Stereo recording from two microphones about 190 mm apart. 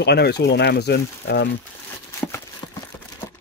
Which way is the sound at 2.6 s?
15° left (ahead or behind).